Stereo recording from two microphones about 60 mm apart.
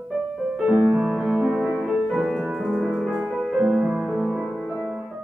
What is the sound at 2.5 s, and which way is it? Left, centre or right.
Music, centre.